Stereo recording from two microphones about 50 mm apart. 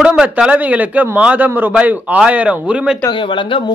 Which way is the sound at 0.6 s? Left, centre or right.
Right.